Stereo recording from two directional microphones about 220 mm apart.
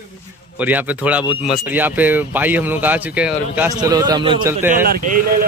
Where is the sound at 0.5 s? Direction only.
5° right (ahead or behind).